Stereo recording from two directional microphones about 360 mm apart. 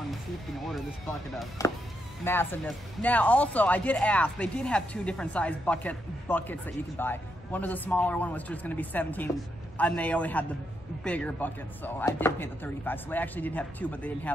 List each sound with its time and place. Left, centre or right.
1.3 s speech: centre